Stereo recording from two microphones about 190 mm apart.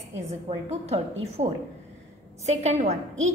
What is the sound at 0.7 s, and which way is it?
Speech, 35° right (ahead or behind).